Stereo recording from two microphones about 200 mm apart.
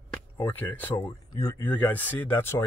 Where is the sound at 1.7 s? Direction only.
10° left (ahead or behind).